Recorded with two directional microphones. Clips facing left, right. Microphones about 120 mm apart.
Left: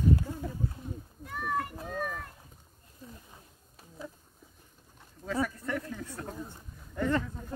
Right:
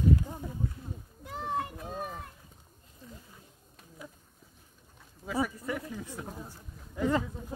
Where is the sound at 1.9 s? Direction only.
25° right (ahead or behind).